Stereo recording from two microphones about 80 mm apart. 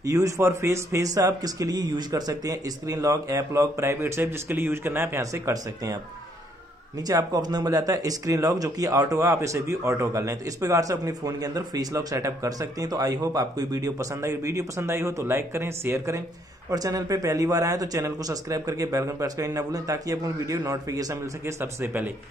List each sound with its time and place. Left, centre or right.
0.0 s speech: right
7.1 s speech: right
16.7 s speech: right